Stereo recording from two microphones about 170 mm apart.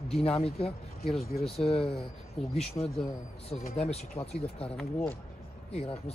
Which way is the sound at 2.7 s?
35° left (ahead or behind).